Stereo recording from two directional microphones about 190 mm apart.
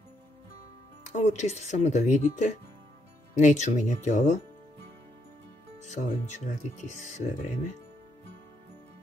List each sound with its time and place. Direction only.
1.1 s speech: 40° left (ahead or behind)
5.8 s speech: 40° left (ahead or behind)